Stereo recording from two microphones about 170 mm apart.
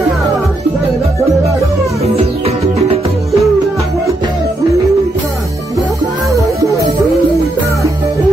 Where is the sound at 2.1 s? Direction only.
35° right (ahead or behind).